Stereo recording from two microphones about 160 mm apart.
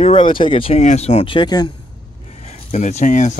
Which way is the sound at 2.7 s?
45° left (ahead or behind).